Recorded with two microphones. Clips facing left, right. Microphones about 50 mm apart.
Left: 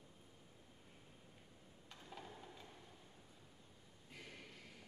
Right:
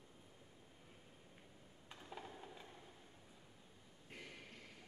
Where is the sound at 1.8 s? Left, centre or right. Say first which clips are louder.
Right 2 dB; centre.